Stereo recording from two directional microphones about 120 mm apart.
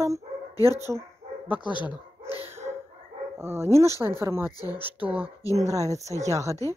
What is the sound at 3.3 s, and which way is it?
Speech, 20° right (ahead or behind).